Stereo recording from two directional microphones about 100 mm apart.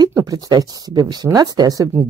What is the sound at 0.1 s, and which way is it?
Speech, 40° right (ahead or behind).